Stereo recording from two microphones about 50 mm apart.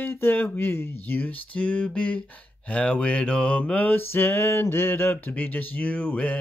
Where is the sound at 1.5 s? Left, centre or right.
Left.